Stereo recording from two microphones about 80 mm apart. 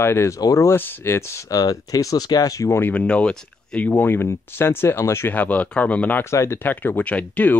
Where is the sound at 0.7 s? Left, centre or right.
Left.